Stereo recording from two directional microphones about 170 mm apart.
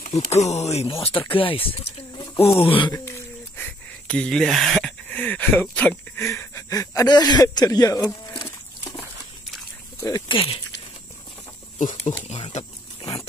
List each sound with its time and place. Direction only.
0.3 s speech: 40° left (ahead or behind)
2.9 s speech: 15° left (ahead or behind)
8.5 s livestock: 10° left (ahead or behind)
9.9 s a sound: 20° left (ahead or behind)
10.3 s speech: 35° left (ahead or behind)
11.8 s speech: 45° left (ahead or behind)
12.1 s a sound: 30° left (ahead or behind)